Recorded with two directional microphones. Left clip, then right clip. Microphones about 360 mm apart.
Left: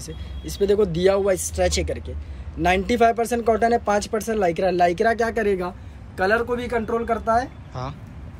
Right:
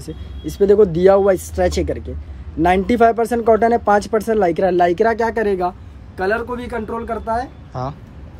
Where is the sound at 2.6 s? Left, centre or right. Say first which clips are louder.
Right 5 dB; right.